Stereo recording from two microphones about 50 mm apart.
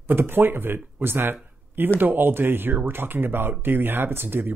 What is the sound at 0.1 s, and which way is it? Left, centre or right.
A man's voice, right.